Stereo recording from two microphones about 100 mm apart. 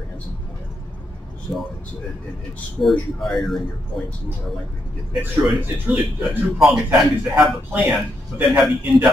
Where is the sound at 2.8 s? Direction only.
Centre (ahead or behind).